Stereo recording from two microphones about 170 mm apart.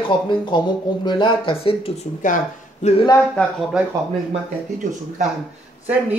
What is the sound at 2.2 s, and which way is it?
Speech, 50° left (ahead or behind).